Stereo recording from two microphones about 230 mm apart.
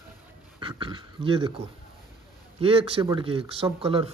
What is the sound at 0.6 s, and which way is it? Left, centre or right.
Speech, right.